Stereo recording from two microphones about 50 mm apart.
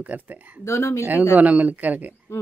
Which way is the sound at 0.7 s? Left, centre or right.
Left.